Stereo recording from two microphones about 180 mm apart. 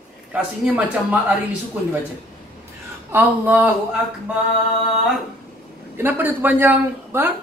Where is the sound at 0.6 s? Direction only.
10° right (ahead or behind).